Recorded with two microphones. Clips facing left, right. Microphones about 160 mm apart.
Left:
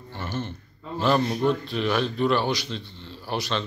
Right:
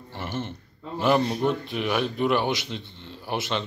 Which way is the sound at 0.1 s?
25° right (ahead or behind).